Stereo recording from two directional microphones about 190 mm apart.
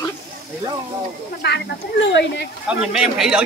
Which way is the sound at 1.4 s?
65° left (ahead or behind).